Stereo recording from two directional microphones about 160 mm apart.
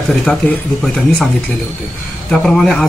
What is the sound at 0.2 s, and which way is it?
Speech, 5° left (ahead or behind).